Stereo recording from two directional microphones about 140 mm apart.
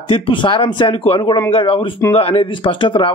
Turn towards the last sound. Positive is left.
turn(degrees=35)  # may be behind; listen again after turning